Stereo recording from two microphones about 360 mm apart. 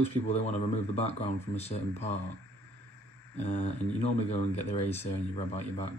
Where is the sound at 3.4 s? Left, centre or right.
Centre.